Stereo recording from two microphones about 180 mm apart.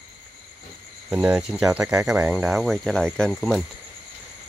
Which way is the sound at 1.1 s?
5° right (ahead or behind).